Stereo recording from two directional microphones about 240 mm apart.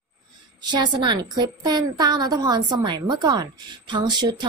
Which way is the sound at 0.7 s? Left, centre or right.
Centre.